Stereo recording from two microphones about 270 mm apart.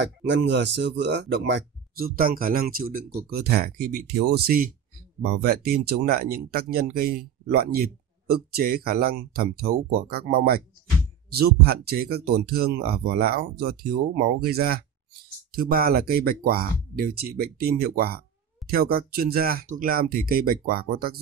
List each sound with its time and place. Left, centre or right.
0.0 s speech: right